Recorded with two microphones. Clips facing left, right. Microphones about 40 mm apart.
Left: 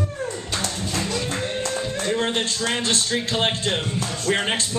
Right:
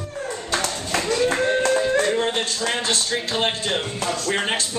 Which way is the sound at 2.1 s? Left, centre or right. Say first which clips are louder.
Right 1 dB; centre.